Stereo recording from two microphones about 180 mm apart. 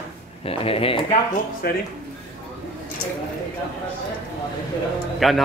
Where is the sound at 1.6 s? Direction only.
55° left (ahead or behind).